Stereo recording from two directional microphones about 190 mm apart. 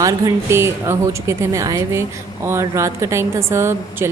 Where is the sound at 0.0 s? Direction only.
15° right (ahead or behind).